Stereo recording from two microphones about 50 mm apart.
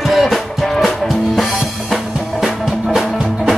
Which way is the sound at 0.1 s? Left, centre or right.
Centre.